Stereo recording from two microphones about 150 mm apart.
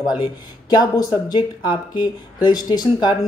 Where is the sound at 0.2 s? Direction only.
25° left (ahead or behind).